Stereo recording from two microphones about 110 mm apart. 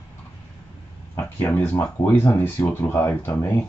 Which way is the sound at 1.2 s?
15° left (ahead or behind).